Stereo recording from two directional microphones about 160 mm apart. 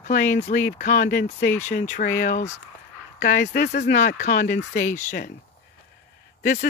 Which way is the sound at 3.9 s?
55° left (ahead or behind).